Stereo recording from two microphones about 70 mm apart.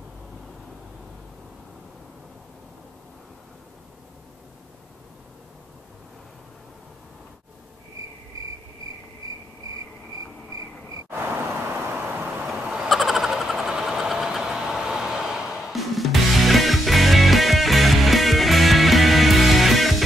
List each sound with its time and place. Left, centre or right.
11.1 s vehicle: right
12.4 s a sound: centre
12.8 s vehicle: centre